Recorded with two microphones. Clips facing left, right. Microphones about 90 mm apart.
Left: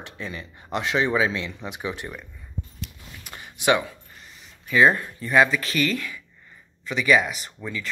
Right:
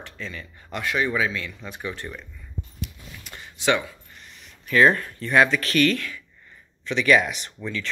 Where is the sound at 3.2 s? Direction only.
15° left (ahead or behind).